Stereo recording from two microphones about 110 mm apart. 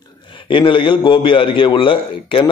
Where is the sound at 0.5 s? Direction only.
50° left (ahead or behind).